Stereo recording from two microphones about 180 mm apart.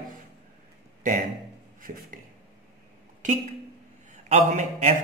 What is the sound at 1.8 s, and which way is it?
Speech, 50° right (ahead or behind).